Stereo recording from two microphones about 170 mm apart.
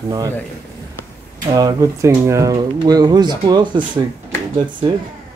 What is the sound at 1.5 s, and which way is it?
Speech, 20° right (ahead or behind).